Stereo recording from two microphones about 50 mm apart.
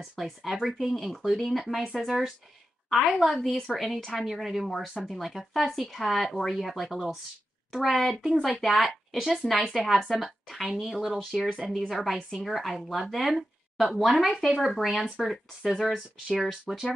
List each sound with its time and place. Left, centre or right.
0.1 s speech: centre